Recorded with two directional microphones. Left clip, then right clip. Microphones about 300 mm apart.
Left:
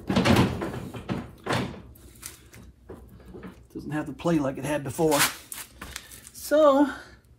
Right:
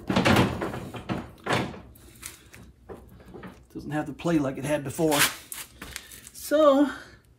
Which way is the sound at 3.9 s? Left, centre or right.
Centre.